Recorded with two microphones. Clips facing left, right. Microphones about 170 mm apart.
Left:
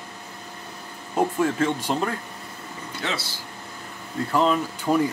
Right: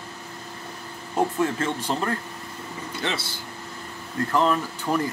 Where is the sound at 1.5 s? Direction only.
10° left (ahead or behind).